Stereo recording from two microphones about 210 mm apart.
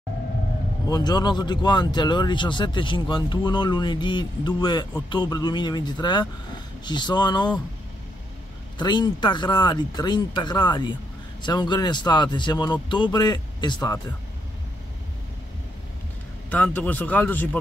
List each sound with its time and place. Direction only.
0.8 s speech: 20° left (ahead or behind)
8.7 s speech: 20° left (ahead or behind)
16.4 s speech: 5° left (ahead or behind)